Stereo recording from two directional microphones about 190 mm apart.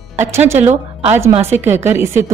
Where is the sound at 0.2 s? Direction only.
15° right (ahead or behind).